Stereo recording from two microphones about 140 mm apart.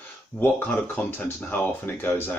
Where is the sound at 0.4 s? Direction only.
15° left (ahead or behind).